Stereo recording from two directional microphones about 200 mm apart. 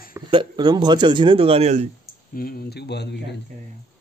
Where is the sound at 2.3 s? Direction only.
50° left (ahead or behind).